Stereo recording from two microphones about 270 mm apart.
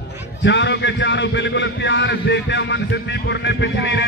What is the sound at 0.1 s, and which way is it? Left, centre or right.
A man's voice, left.